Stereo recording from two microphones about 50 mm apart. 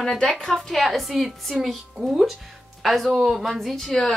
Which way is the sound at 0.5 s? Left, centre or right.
Centre.